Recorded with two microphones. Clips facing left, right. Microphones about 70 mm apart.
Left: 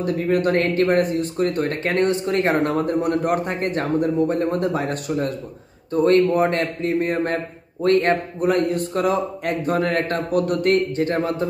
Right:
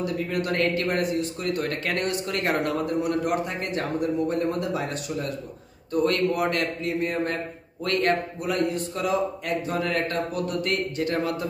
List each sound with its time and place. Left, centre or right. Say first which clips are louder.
0.0 s a man's voice: left 7 dB; left
1.7 s a man's voice: left 7 dB; left
5.9 s a man's voice: left 7 dB; left
7.8 s a man's voice: left 6 dB; left
8.5 s speech: left 5 dB; left